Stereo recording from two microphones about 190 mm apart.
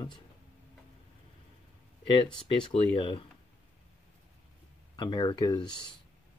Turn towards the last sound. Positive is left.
turn(degrees=20)  # may be behind; listen again after turning